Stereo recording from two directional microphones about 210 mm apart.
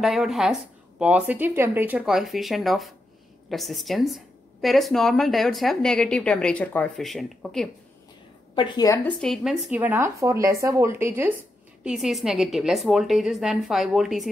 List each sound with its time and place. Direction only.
0.0 s speech: centre (ahead or behind)
8.5 s a woman's voice: 20° left (ahead or behind)
9.2 s speech: centre (ahead or behind)